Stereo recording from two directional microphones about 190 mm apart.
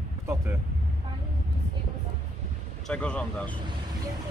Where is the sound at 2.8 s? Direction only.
5° left (ahead or behind).